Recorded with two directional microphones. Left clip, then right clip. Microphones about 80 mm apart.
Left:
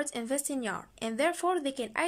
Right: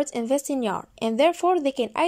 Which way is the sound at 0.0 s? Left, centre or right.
Right.